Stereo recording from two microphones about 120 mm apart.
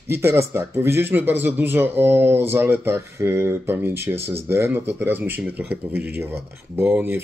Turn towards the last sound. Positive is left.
turn(degrees=-15)  # may be behind; listen again after turning